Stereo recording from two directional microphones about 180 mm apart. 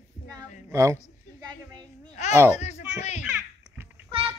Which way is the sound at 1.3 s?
20° right (ahead or behind).